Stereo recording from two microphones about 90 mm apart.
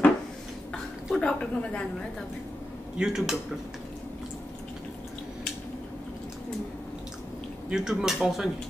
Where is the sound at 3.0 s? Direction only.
5° right (ahead or behind).